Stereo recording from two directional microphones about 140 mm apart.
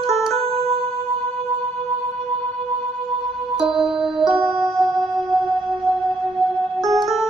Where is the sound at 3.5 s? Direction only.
5° right (ahead or behind).